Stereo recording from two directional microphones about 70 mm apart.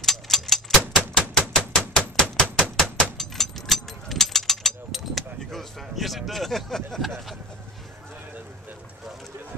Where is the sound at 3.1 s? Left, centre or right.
Centre.